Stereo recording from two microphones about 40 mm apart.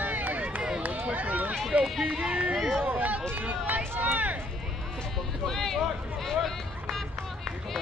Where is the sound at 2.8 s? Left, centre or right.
Right.